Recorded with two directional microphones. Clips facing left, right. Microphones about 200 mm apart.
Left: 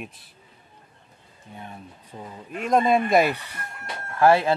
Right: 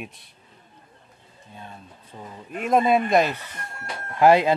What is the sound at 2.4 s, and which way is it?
Speech, centre (ahead or behind).